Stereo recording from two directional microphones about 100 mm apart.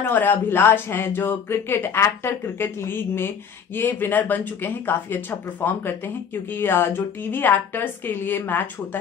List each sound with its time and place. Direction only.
0.0 s speech: 20° left (ahead or behind)